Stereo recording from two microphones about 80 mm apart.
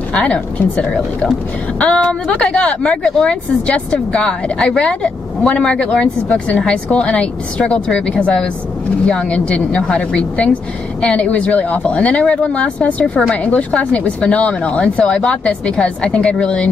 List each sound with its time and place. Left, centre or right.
0.1 s speech: centre